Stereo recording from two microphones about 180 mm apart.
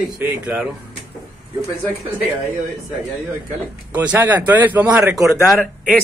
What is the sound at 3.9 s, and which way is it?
Speech, 10° right (ahead or behind).